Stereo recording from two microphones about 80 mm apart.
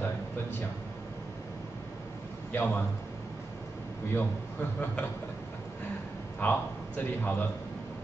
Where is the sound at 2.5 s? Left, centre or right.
Left.